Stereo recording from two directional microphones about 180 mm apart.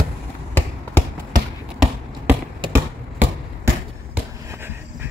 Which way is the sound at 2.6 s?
25° right (ahead or behind).